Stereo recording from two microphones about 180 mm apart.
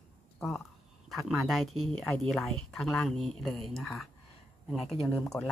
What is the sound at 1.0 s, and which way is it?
Speech, centre (ahead or behind).